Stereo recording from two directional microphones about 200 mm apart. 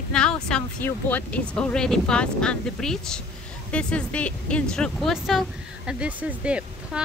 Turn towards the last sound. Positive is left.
turn(degrees=-5)  # may be behind; listen again after turning